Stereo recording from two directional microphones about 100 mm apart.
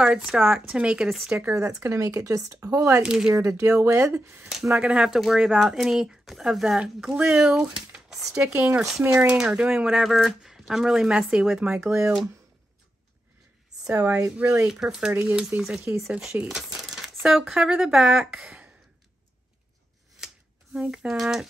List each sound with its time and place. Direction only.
0.0 s speech: 10° right (ahead or behind)
1.5 s speech: 30° right (ahead or behind)
3.0 s speech: 5° right (ahead or behind)
3.3 s speech: 35° right (ahead or behind)
4.5 s speech: 5° right (ahead or behind)
13.9 s speech: 15° right (ahead or behind)
20.7 s speech: 10° right (ahead or behind)